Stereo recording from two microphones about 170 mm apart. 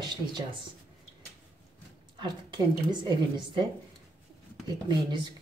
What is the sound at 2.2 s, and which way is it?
A woman's voice, 30° right (ahead or behind).